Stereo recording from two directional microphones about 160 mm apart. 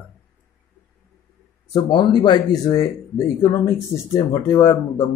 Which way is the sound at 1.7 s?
30° left (ahead or behind).